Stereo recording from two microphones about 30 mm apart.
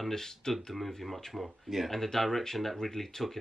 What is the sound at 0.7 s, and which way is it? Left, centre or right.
A man's voice, centre.